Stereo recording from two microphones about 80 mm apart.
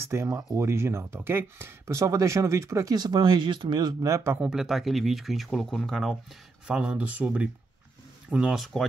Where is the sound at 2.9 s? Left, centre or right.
Right.